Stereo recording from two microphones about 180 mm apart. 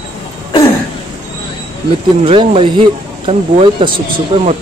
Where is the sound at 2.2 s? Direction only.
30° right (ahead or behind).